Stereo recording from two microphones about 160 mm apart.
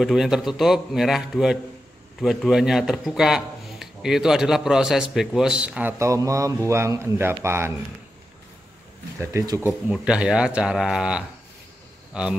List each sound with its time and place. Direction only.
0.0 s a man's voice: centre (ahead or behind)
9.2 s speech: 15° right (ahead or behind)
9.8 s a man's voice: 5° right (ahead or behind)